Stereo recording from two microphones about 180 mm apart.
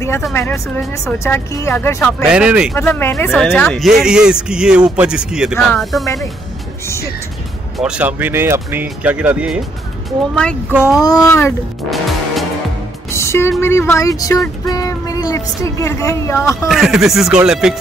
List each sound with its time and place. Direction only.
0.3 s speech: 15° left (ahead or behind)
2.2 s speech: 5° right (ahead or behind)
2.7 s speech: 15° left (ahead or behind)
7.7 s speech: 5° right (ahead or behind)
10.7 s speech: 5° right (ahead or behind)
11.0 s speech: 20° left (ahead or behind)
11.9 s music: centre (ahead or behind)
13.1 s speech: 15° left (ahead or behind)
16.6 s speech: centre (ahead or behind)